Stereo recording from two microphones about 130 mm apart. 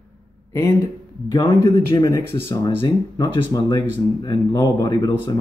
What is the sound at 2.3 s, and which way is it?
Speech, 40° left (ahead or behind).